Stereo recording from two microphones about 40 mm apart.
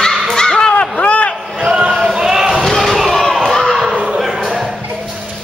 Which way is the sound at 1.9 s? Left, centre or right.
Centre.